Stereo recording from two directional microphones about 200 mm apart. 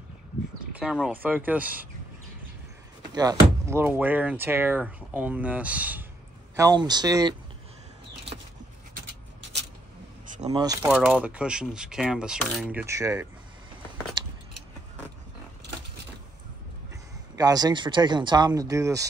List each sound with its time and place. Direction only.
0.7 s speech: 5° right (ahead or behind)
3.1 s speech: 20° right (ahead or behind)
6.5 s speech: 20° right (ahead or behind)
10.5 s speech: 20° right (ahead or behind)
10.9 s speech: 5° right (ahead or behind)
17.4 s speech: 20° right (ahead or behind)